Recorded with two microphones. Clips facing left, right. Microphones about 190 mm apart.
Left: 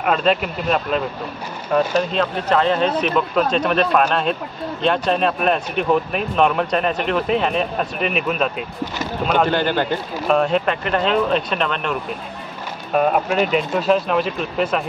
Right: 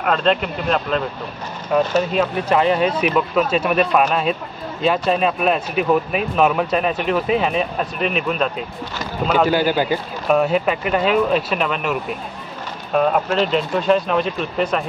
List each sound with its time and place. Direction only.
0.0 s speech: 5° left (ahead or behind)
12.9 s speech: 5° left (ahead or behind)